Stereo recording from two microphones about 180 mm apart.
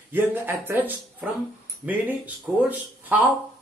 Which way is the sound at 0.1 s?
10° right (ahead or behind).